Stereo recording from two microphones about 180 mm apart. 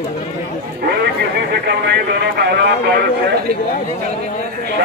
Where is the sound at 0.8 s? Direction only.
65° right (ahead or behind).